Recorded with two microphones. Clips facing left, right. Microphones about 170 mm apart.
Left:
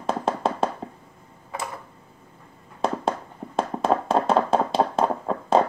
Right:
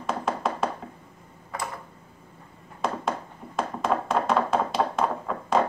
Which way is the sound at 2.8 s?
30° left (ahead or behind).